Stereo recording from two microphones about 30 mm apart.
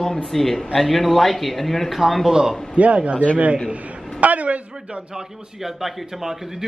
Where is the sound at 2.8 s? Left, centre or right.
Right.